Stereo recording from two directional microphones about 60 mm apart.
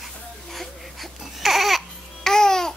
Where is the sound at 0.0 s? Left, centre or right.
Centre.